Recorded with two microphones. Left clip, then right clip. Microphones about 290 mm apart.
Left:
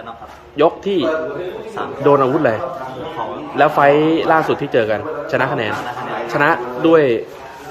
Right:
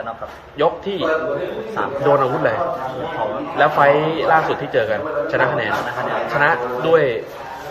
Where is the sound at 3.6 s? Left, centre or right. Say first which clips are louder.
Left 2 dB; left.